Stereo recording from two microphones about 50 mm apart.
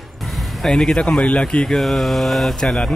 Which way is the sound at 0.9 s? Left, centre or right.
Centre.